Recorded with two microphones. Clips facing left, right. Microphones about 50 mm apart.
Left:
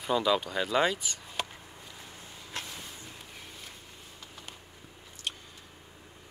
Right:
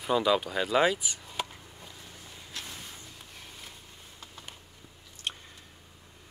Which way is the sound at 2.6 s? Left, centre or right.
Left.